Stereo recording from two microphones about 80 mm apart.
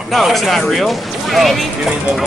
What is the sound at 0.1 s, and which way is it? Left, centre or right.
Speech, centre.